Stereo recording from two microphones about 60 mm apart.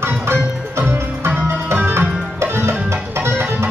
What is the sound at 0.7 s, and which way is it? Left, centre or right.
Music, right.